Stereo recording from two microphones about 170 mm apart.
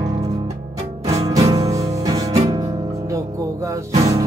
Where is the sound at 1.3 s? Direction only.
20° right (ahead or behind).